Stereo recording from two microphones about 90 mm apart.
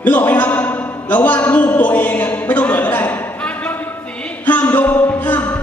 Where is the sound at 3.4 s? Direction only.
15° left (ahead or behind).